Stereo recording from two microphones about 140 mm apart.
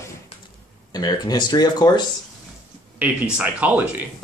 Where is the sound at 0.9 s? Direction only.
30° left (ahead or behind).